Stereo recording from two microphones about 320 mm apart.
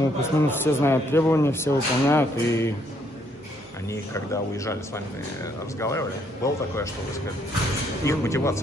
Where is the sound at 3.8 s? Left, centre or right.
Centre.